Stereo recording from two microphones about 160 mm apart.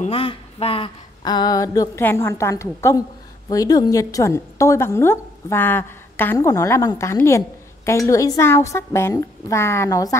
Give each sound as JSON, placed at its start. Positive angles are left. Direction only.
{"t": 0.0, "sound": "a woman's voice", "side_deg": 35}